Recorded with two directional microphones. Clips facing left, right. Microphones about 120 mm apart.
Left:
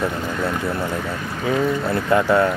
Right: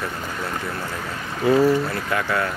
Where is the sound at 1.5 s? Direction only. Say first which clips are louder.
Right 4 dB; 5° right (ahead or behind).